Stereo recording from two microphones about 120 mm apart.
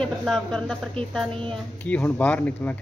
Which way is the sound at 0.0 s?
5° left (ahead or behind).